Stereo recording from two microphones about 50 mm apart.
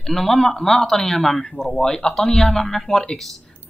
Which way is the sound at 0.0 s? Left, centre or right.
Centre.